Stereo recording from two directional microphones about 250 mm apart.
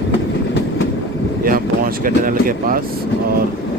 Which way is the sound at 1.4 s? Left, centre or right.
Right.